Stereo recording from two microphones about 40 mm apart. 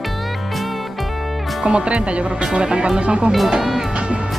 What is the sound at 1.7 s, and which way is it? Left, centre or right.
Speech, right.